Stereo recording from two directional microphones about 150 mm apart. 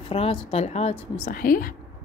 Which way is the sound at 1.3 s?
70° left (ahead or behind).